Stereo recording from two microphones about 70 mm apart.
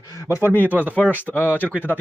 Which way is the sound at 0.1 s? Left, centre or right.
Left.